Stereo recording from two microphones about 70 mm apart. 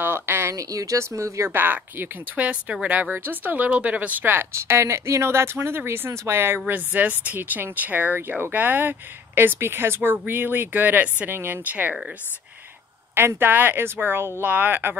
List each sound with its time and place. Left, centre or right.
0.0 s a sound: right
0.6 s speech: right
1.6 s speech: right
6.7 s speech: right
13.1 s speech: right